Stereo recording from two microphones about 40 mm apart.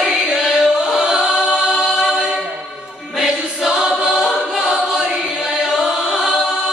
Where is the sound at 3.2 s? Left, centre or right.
Centre.